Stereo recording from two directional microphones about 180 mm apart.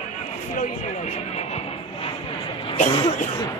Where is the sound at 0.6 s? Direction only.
35° left (ahead or behind).